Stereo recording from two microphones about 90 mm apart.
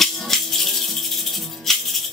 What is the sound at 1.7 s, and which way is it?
Music, 5° left (ahead or behind).